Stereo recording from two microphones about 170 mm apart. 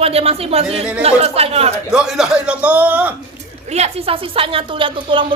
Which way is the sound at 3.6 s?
40° right (ahead or behind).